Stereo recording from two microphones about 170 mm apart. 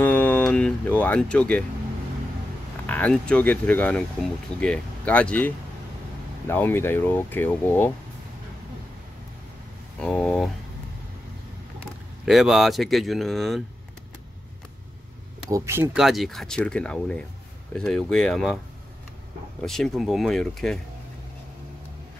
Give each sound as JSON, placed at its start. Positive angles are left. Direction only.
{"t": 0.0, "sound": "a sound", "side_deg": 10}
{"t": 2.9, "sound": "speech", "side_deg": 10}
{"t": 9.9, "sound": "speech", "side_deg": 5}
{"t": 12.3, "sound": "speech", "side_deg": 0}
{"t": 15.5, "sound": "speech", "side_deg": -15}
{"t": 16.0, "sound": "speech", "side_deg": 0}
{"t": 19.6, "sound": "speech", "side_deg": 0}